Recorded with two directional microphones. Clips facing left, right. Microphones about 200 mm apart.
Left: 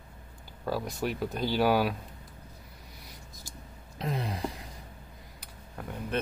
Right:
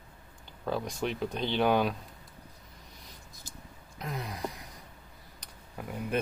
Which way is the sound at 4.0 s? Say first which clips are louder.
Left 4 dB; 30° left (ahead or behind).